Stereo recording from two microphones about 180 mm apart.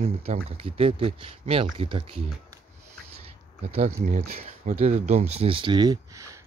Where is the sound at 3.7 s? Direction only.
40° right (ahead or behind).